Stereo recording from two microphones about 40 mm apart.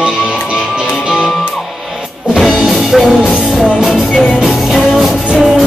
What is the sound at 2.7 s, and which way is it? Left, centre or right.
Music, centre.